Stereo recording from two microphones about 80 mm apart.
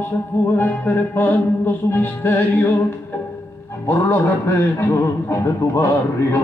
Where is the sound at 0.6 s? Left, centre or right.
Left.